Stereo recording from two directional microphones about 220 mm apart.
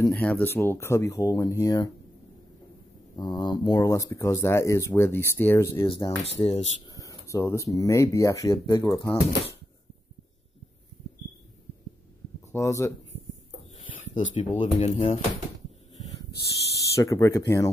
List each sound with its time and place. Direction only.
0.0 s speech: 10° left (ahead or behind)
3.2 s speech: 20° left (ahead or behind)
6.4 s speech: 25° left (ahead or behind)
6.9 s speech: 15° left (ahead or behind)
12.5 s speech: 15° left (ahead or behind)
13.9 s speech: 35° left (ahead or behind)
16.9 s speech: 15° left (ahead or behind)